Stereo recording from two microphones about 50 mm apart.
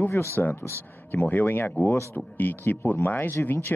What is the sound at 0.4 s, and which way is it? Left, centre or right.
Speech, left.